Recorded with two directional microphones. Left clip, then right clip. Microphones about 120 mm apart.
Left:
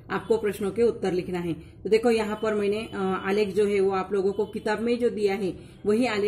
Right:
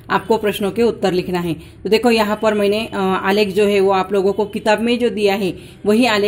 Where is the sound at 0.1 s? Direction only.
20° right (ahead or behind).